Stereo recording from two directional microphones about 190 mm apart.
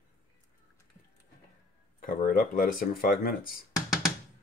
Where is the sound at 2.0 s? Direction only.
45° left (ahead or behind).